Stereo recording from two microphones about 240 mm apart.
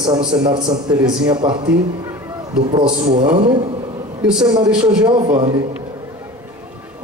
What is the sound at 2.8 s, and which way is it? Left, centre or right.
A man's voice, centre.